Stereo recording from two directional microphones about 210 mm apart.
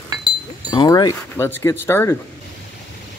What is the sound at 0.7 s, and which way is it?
Speech, 20° left (ahead or behind).